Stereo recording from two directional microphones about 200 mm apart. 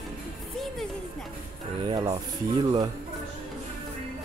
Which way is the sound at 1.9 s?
25° right (ahead or behind).